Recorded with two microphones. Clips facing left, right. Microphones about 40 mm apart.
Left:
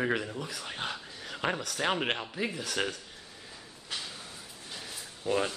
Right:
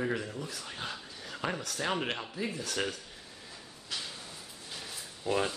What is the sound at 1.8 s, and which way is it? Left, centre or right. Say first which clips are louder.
Speech: left 2 dB; left.